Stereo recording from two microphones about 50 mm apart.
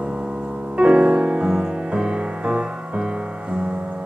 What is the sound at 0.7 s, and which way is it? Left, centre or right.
Music, right.